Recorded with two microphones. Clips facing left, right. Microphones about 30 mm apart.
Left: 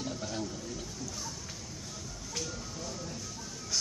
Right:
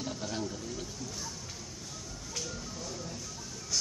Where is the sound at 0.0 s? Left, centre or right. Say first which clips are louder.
Even; centre.